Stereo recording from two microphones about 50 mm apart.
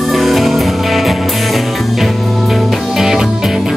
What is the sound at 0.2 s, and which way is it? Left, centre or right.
Music, centre.